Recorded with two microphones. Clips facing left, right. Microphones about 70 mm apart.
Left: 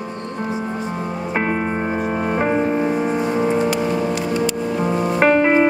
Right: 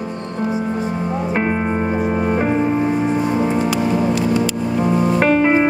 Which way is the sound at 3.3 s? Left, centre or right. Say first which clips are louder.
Even; centre.